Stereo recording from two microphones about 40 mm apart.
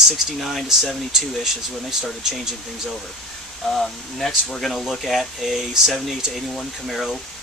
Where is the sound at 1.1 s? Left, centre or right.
Centre.